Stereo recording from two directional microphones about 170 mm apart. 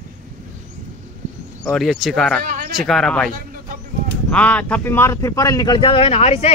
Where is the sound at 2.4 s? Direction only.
55° right (ahead or behind).